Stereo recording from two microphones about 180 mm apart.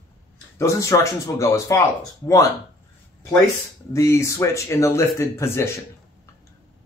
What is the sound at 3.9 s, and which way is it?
Speech, 15° left (ahead or behind).